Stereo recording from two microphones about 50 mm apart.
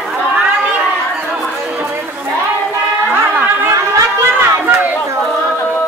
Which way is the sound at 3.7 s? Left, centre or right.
Right.